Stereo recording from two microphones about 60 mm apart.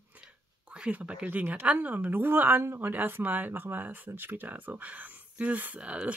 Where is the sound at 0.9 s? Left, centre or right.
Right.